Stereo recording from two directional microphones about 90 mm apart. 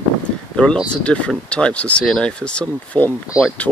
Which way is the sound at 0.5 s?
15° left (ahead or behind).